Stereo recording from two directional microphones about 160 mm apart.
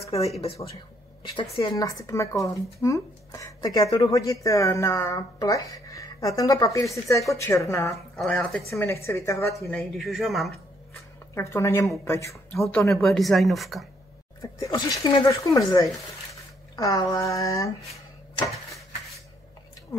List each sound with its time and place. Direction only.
1.2 s a woman's voice: 35° left (ahead or behind)
1.8 s a woman's voice: 20° left (ahead or behind)
8.2 s speech: centre (ahead or behind)
8.6 s a woman's voice: 15° left (ahead or behind)
9.7 s speech: centre (ahead or behind)
11.3 s a woman's voice: 20° left (ahead or behind)
12.6 s speech: centre (ahead or behind)
14.4 s speech: 20° left (ahead or behind)